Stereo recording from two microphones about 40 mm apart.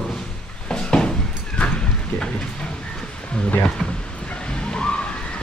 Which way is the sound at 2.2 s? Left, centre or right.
Left.